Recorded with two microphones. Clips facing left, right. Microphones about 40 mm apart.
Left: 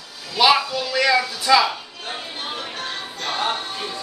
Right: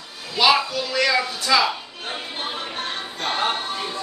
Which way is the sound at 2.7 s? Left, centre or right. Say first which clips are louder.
Right 1 dB; right.